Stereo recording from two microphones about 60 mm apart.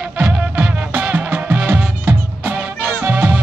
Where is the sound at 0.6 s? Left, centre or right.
Right.